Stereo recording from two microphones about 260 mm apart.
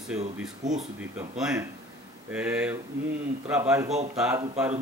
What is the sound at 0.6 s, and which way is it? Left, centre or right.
Speech, right.